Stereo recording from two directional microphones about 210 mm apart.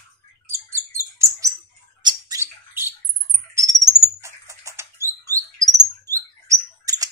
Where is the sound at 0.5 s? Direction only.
10° right (ahead or behind).